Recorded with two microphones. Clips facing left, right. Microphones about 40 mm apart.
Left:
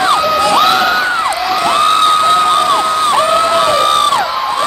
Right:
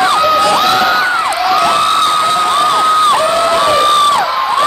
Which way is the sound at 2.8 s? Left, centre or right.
Right.